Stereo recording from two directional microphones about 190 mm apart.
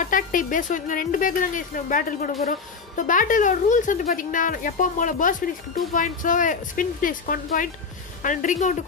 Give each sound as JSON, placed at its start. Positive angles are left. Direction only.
{"t": 0.0, "sound": "a woman's voice", "side_deg": 45}